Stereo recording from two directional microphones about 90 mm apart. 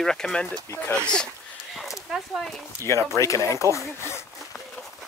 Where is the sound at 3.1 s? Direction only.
35° left (ahead or behind).